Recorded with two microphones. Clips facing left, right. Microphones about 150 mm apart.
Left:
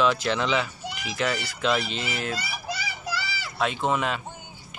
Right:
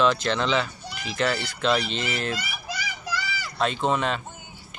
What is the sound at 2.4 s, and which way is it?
Children playing, 30° left (ahead or behind).